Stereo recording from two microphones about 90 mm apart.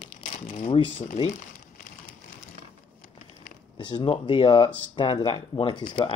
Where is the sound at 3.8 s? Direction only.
60° left (ahead or behind).